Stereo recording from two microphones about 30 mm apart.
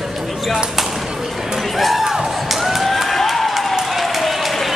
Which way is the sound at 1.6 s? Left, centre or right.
Centre.